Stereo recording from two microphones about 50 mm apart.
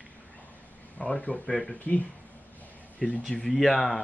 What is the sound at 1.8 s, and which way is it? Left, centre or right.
Speech, left.